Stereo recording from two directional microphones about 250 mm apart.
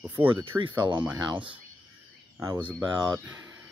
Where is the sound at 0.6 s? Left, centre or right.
Centre.